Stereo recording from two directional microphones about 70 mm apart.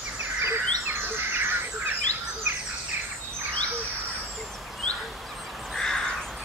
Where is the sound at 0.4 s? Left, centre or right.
Right.